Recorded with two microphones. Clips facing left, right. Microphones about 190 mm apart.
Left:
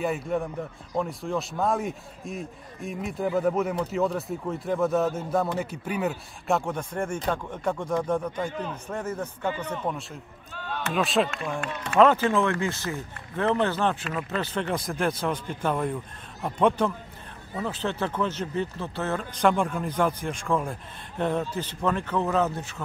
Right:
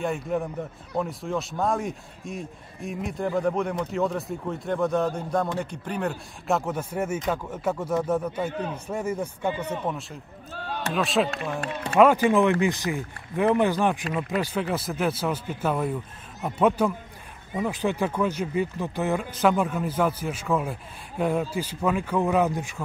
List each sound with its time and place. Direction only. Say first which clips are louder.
0.0 s speech: even; centre (ahead or behind)
11.6 s speech: right 2 dB; 35° right (ahead or behind)
12.0 s speech: right 2 dB; 10° right (ahead or behind)